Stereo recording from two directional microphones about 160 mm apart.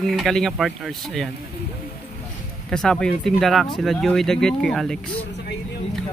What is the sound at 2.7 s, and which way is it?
Speech, 5° left (ahead or behind).